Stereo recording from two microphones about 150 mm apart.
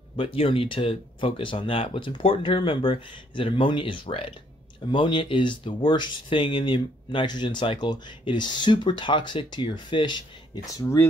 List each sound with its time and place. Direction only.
0.1 s speech: 35° left (ahead or behind); by 11.1 s 20° left (ahead or behind)